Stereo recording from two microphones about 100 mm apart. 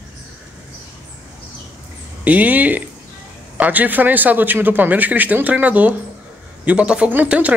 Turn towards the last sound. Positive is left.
turn(degrees=-15)  # may be behind; listen again after turning